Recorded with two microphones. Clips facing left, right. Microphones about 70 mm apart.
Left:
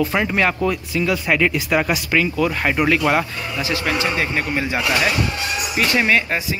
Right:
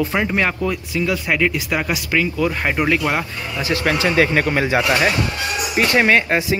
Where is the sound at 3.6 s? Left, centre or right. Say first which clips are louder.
Right 3 dB; right.